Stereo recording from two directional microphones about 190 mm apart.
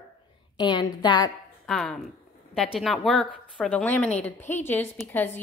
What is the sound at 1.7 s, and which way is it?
A woman's voice, 5° left (ahead or behind).